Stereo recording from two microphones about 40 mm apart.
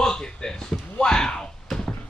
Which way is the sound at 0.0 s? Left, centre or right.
Centre.